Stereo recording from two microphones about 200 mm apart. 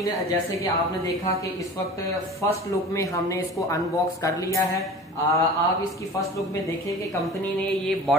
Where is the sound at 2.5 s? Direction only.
15° left (ahead or behind).